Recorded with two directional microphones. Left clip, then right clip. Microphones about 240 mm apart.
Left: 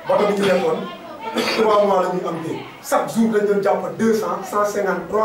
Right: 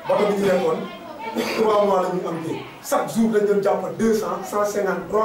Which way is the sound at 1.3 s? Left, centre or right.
Left.